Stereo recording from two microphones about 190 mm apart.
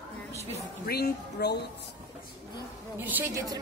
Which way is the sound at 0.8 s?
55° left (ahead or behind).